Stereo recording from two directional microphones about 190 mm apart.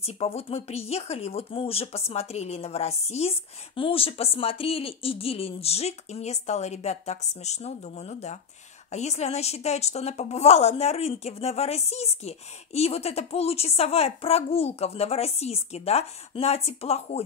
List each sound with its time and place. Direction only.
0.0 s speech: 30° left (ahead or behind)